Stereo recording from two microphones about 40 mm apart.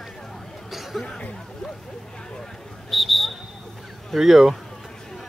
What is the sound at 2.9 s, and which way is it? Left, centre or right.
Speech, centre.